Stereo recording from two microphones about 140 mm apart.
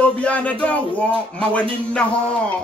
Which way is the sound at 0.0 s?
10° left (ahead or behind).